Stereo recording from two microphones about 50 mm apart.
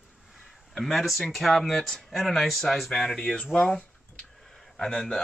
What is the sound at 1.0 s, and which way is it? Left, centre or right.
Speech, centre.